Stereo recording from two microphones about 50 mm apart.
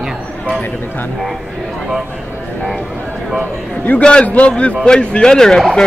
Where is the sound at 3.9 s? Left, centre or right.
Left.